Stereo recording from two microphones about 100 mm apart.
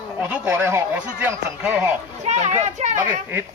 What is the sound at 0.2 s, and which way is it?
Speech, 20° right (ahead or behind).